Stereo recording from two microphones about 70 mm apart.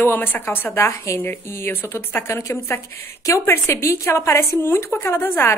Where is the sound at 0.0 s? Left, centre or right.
Left.